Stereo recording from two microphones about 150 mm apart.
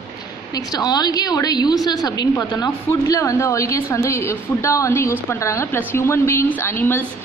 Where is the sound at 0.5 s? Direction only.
25° left (ahead or behind).